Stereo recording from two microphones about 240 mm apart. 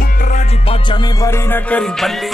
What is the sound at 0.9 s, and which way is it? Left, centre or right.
Music, centre.